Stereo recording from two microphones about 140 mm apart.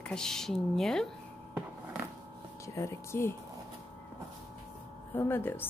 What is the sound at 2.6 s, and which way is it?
Speech, 20° left (ahead or behind).